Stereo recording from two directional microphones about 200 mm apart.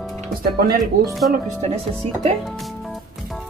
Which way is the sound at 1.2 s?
45° right (ahead or behind).